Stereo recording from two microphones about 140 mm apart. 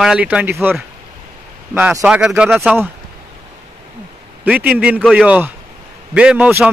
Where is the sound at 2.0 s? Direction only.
5° right (ahead or behind).